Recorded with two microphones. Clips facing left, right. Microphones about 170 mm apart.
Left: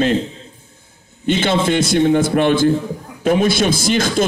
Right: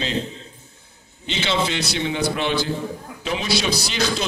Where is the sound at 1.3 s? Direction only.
50° left (ahead or behind).